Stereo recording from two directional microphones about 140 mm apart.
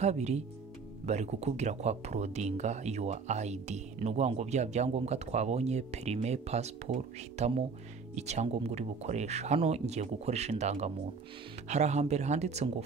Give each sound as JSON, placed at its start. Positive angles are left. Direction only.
{"t": 0.0, "sound": "speech", "side_deg": -55}